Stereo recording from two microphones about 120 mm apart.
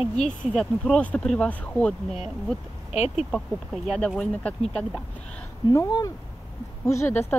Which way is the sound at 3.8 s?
5° left (ahead or behind).